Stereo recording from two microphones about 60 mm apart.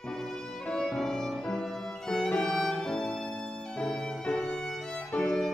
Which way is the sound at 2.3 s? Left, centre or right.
Centre.